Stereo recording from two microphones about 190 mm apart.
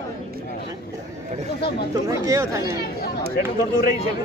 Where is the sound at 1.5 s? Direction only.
60° left (ahead or behind).